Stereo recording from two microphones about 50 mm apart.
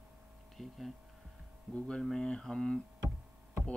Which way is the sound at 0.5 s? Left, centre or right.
Centre.